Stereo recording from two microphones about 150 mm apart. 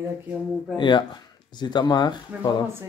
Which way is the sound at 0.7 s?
30° left (ahead or behind).